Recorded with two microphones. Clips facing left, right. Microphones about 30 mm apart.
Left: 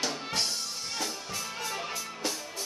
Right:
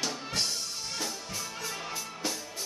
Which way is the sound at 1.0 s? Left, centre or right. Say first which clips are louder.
Left 2 dB; left.